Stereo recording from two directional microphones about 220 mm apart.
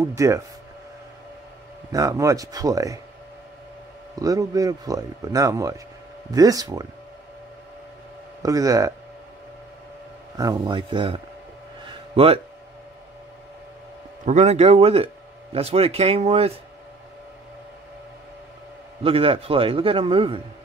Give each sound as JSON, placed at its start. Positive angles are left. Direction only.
{"t": 0.1, "sound": "speech", "side_deg": -15}
{"t": 1.9, "sound": "speech", "side_deg": -15}
{"t": 4.2, "sound": "speech", "side_deg": -15}
{"t": 8.4, "sound": "speech", "side_deg": -15}
{"t": 10.3, "sound": "a man's voice", "side_deg": -15}
{"t": 12.2, "sound": "a man's voice", "side_deg": -25}
{"t": 14.2, "sound": "a man's voice", "side_deg": -30}
{"t": 19.0, "sound": "a man's voice", "side_deg": -25}